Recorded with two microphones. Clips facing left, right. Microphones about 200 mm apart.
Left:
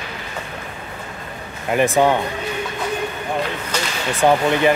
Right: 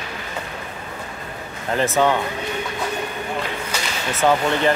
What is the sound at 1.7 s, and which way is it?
Speech, 15° left (ahead or behind).